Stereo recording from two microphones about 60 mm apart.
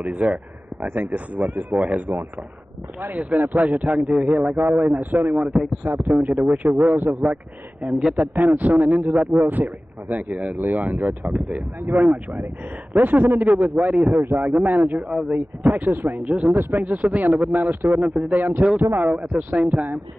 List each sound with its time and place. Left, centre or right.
0.0 s a man's voice: right
16.3 s a man's voice: right